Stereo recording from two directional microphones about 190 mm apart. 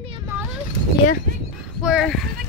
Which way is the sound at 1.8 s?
Centre (ahead or behind).